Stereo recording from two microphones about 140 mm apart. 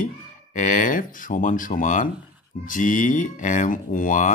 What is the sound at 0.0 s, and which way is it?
Speech, 70° left (ahead or behind).